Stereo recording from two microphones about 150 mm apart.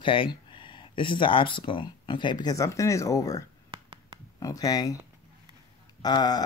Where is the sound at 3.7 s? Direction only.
35° right (ahead or behind).